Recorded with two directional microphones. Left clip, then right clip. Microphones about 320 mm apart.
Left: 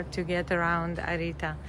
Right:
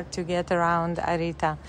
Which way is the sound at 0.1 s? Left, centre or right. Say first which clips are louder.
Right 4 dB; centre.